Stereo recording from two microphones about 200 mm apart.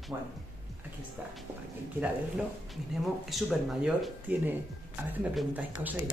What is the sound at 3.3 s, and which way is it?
Speech, 5° right (ahead or behind).